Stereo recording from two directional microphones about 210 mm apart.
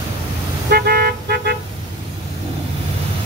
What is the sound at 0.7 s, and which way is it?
Car, 45° right (ahead or behind).